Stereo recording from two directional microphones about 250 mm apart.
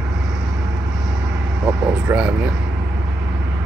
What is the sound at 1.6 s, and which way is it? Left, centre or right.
Speech, centre.